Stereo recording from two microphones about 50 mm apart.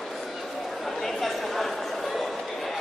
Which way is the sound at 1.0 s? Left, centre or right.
Centre.